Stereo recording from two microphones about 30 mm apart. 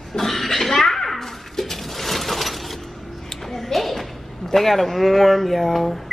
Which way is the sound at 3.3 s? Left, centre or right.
Centre.